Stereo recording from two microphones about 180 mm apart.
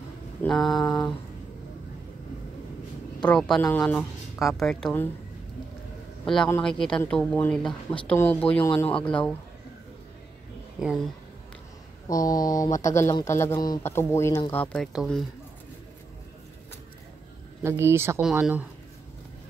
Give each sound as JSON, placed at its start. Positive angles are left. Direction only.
{"t": 0.4, "sound": "a woman's voice", "side_deg": 0}
{"t": 3.2, "sound": "a woman's voice", "side_deg": 5}
{"t": 6.2, "sound": "a woman's voice", "side_deg": 5}
{"t": 7.6, "sound": "speech", "side_deg": 30}
{"t": 8.1, "sound": "speech", "side_deg": 10}
{"t": 10.8, "sound": "a woman's voice", "side_deg": 0}
{"t": 12.1, "sound": "a woman's voice", "side_deg": 20}
{"t": 17.6, "sound": "speech", "side_deg": -15}